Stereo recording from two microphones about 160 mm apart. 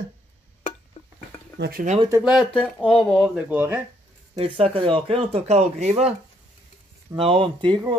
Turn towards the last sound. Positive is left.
turn(degrees=-30)  # may be behind; listen again after turning